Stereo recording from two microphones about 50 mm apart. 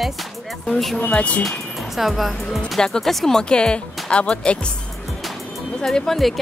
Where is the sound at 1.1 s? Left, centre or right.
Left.